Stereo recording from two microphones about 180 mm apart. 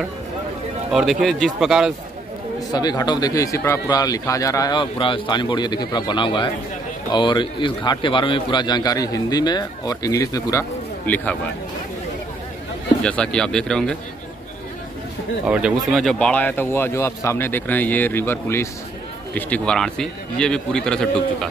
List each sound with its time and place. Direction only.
0.9 s a man's voice: centre (ahead or behind)
2.7 s speech: 20° left (ahead or behind)
13.0 s a man's voice: 5° left (ahead or behind)
15.4 s a man's voice: 5° right (ahead or behind)